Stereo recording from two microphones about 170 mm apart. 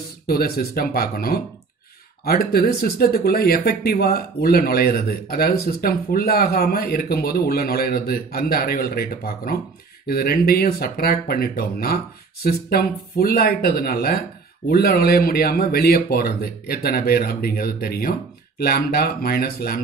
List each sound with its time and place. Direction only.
0.3 s speech: 60° left (ahead or behind)